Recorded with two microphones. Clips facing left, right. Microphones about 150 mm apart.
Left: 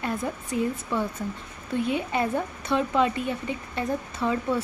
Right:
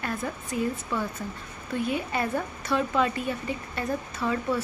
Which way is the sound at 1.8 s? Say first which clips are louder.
Left 2 dB; 25° left (ahead or behind).